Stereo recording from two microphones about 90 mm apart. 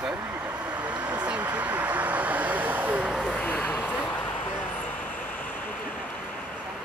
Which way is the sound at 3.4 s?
20° left (ahead or behind).